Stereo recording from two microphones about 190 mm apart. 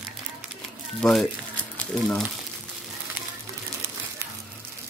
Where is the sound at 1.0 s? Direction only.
Centre (ahead or behind).